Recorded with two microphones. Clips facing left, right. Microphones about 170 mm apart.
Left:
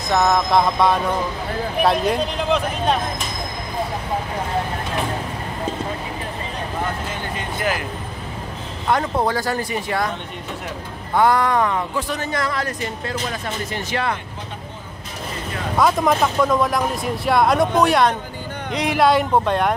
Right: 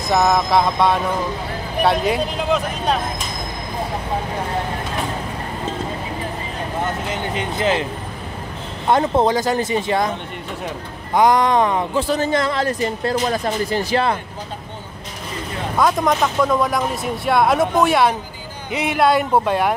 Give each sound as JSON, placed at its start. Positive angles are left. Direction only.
{"t": 0.1, "sound": "speech", "side_deg": -5}
{"t": 7.3, "sound": "speech", "side_deg": -20}
{"t": 8.8, "sound": "speech", "side_deg": -25}
{"t": 11.1, "sound": "speech", "side_deg": -20}
{"t": 12.0, "sound": "speech", "side_deg": -35}
{"t": 15.8, "sound": "speech", "side_deg": 0}